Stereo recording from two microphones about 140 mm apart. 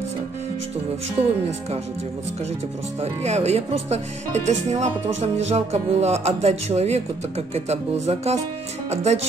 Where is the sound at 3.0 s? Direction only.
50° right (ahead or behind).